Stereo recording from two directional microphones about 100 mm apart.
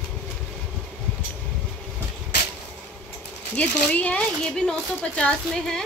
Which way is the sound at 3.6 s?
15° left (ahead or behind).